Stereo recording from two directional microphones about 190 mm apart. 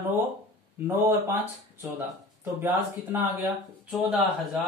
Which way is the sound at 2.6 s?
10° right (ahead or behind).